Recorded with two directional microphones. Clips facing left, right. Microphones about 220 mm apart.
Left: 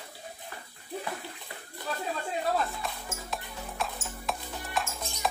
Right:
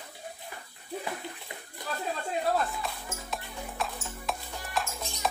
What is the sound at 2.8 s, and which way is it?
Music, centre (ahead or behind).